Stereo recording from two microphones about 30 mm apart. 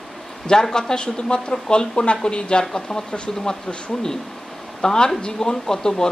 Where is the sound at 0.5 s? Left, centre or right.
Left.